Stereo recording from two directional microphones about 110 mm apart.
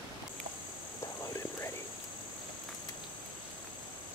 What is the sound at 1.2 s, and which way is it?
Whispering, 25° left (ahead or behind).